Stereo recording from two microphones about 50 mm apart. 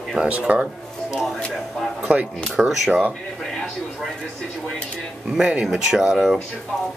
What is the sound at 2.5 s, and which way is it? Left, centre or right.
Speech, centre.